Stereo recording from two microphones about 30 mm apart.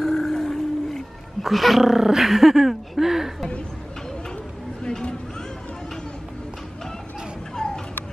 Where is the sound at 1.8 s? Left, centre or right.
Centre.